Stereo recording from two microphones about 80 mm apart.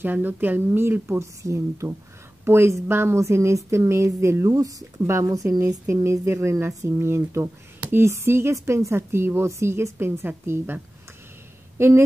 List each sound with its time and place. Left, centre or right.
0.0 s a woman's voice: right
4.5 s a woman's voice: right
11.8 s speech: right